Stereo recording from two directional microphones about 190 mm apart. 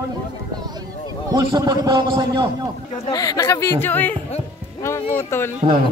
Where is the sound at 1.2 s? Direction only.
20° right (ahead or behind).